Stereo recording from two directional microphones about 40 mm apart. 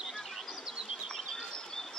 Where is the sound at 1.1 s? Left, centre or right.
Centre.